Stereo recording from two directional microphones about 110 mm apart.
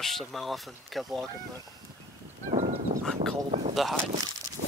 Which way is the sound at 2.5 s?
70° right (ahead or behind).